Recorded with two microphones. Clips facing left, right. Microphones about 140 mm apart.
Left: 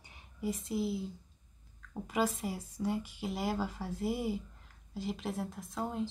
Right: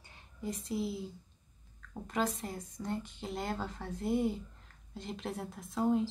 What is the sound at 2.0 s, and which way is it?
A woman's voice, 5° left (ahead or behind).